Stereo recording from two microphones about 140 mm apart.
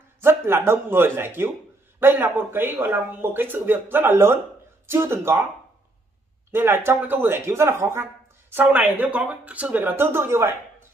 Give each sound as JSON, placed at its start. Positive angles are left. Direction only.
{"t": 0.2, "sound": "speech", "side_deg": -15}
{"t": 6.5, "sound": "speech", "side_deg": -15}